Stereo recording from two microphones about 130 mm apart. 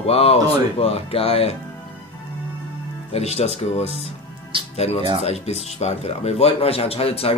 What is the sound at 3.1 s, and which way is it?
Speech, 55° left (ahead or behind).